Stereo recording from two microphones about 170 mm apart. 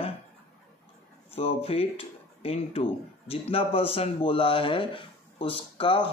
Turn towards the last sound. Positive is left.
turn(degrees=30)  # may be behind; listen again after turning